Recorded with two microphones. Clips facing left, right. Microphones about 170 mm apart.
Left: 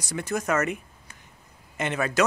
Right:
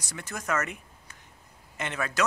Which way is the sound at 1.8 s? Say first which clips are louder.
Left 5 dB; 15° left (ahead or behind).